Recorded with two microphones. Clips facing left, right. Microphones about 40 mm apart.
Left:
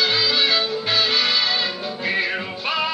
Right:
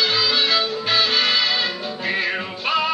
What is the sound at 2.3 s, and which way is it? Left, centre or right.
Music, centre.